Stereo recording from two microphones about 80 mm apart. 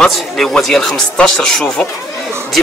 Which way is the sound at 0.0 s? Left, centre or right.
Centre.